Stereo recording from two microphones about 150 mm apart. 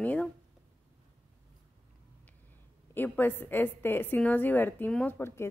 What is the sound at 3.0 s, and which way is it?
A woman's voice, 15° left (ahead or behind).